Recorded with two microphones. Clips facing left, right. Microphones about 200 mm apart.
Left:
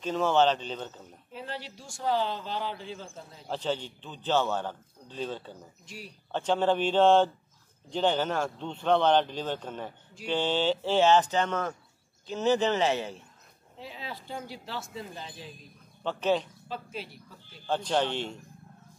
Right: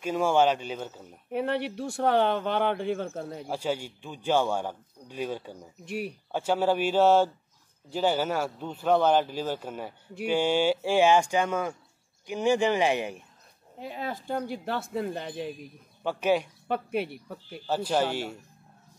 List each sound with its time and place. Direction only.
0.0 s speech: 10° right (ahead or behind)
1.3 s speech: 60° right (ahead or behind)
3.4 s speech: 10° right (ahead or behind)
5.9 s speech: 60° right (ahead or behind)
6.3 s speech: 10° right (ahead or behind)
13.7 s speech: 50° right (ahead or behind)
16.0 s a man's voice: 10° right (ahead or behind)
16.6 s speech: 60° right (ahead or behind)
17.6 s speech: 5° right (ahead or behind)